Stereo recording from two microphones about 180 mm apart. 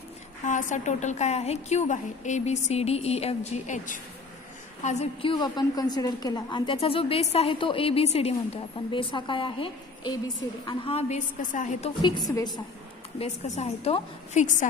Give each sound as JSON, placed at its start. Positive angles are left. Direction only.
{"t": 0.5, "sound": "a woman's voice", "side_deg": 45}
{"t": 5.3, "sound": "a woman's voice", "side_deg": 25}
{"t": 12.3, "sound": "a woman's voice", "side_deg": 20}
{"t": 13.2, "sound": "a woman's voice", "side_deg": 35}